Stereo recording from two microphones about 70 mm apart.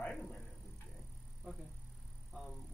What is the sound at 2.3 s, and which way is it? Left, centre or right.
Music, centre.